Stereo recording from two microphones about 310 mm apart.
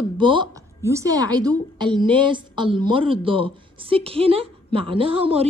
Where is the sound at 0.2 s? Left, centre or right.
Centre.